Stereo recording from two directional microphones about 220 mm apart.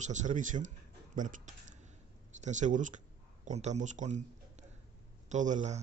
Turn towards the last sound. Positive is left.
turn(degrees=-30)  # may be behind; listen again after turning